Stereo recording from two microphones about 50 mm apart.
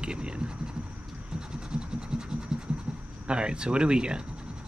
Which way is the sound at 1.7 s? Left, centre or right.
Centre.